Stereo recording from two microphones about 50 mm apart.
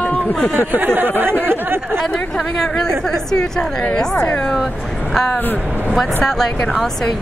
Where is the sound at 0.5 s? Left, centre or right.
Right.